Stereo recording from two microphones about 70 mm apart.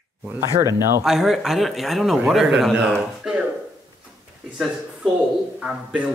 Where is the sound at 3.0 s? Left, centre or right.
Centre.